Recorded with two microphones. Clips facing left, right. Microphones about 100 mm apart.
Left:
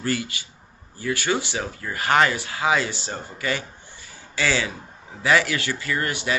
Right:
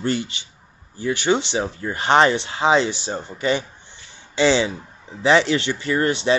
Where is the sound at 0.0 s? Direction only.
25° right (ahead or behind).